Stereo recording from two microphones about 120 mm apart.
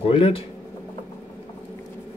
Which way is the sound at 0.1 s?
50° left (ahead or behind).